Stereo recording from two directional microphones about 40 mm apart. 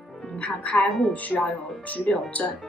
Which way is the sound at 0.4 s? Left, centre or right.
Left.